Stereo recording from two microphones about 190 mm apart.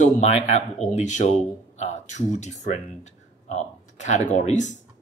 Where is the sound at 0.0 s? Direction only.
35° left (ahead or behind).